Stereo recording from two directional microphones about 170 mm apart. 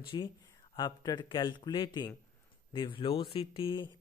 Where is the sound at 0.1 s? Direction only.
25° left (ahead or behind).